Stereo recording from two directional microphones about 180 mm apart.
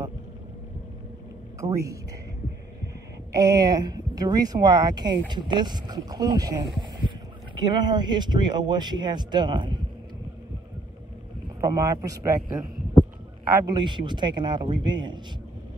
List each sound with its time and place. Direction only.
1.6 s a woman's voice: 20° right (ahead or behind)
3.3 s speech: 20° right (ahead or behind)
11.6 s a woman's voice: 20° right (ahead or behind)
13.7 s speech: 25° right (ahead or behind)